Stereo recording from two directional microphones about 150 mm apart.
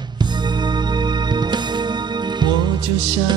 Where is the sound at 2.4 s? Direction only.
30° right (ahead or behind).